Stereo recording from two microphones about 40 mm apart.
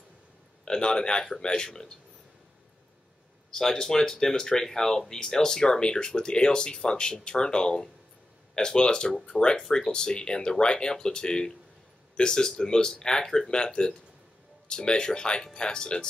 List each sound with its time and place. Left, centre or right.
0.7 s speech: centre
3.5 s speech: centre